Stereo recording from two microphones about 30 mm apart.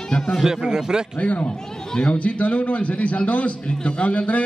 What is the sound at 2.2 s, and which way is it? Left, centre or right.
A man's voice, left.